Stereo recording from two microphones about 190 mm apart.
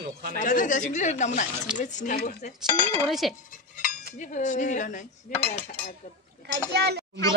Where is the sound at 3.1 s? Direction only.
Centre (ahead or behind).